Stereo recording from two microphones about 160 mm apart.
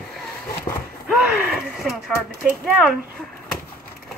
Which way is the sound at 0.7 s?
25° left (ahead or behind).